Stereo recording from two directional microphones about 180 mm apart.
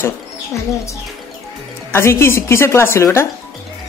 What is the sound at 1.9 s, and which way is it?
Speech, 15° left (ahead or behind).